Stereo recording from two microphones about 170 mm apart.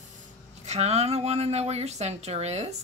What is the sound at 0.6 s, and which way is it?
Speech, 40° right (ahead or behind).